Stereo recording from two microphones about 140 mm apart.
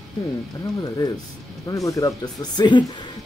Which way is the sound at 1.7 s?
25° left (ahead or behind).